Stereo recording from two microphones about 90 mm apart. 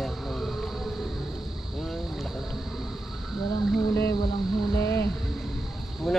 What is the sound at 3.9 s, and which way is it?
Speech, 30° left (ahead or behind).